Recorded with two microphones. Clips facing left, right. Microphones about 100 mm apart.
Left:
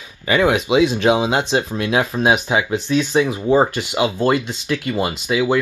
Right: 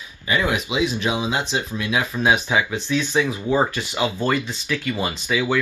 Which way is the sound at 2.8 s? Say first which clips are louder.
Left 4 dB; 45° left (ahead or behind).